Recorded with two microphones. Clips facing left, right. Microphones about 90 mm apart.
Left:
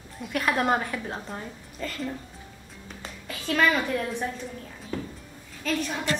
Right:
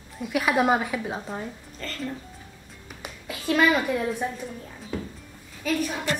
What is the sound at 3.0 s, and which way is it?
A woman's voice, 10° right (ahead or behind).